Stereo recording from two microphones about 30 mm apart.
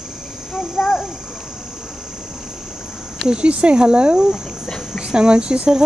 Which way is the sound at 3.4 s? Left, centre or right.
Right.